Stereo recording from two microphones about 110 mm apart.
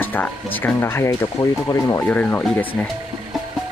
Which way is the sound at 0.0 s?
15° left (ahead or behind).